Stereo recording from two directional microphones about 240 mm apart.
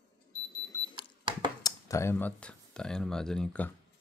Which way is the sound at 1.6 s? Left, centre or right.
Centre.